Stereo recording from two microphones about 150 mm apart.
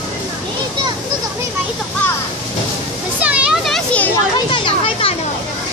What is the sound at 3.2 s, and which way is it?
Children playing, 5° right (ahead or behind).